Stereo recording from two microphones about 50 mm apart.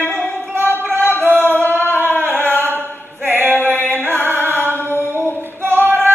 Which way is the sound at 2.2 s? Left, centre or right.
Right.